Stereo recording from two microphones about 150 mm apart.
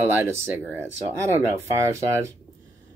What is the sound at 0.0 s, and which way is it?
Speech, 15° right (ahead or behind).